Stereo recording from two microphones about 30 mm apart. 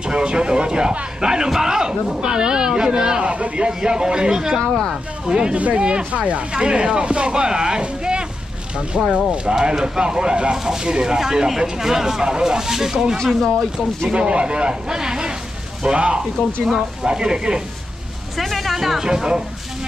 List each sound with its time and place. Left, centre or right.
0.0 s a man's voice: right
6.1 s speech: right
6.5 s speech: right
8.0 s a sound: right
9.1 s a man's voice: right
11.1 s a man's voice: centre
14.1 s a man's voice: right
18.4 s a sound: centre
18.8 s speech: centre
19.0 s a man's voice: right